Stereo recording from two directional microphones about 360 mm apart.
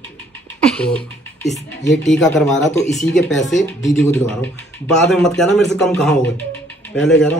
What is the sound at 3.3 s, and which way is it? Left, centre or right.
A woman's voice, centre.